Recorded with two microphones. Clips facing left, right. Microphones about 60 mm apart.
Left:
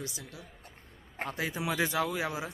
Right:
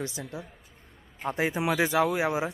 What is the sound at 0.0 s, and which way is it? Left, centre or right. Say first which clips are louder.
A woman's voice: right 7 dB; right.